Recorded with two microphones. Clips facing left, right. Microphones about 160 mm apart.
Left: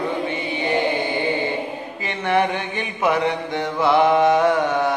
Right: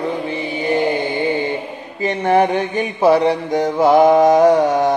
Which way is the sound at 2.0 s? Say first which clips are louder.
Right 6 dB; 40° right (ahead or behind).